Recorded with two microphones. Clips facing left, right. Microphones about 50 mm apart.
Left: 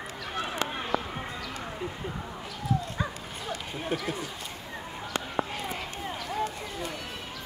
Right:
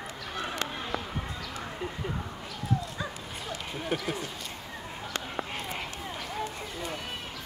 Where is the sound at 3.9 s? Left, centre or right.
Right.